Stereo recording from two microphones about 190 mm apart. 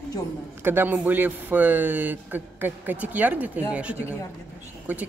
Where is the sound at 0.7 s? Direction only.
10° right (ahead or behind).